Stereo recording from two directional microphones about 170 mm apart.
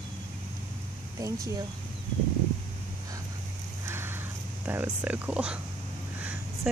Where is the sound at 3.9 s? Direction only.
15° right (ahead or behind).